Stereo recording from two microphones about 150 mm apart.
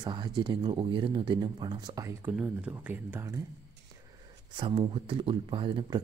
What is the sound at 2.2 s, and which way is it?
Speech, 5° right (ahead or behind).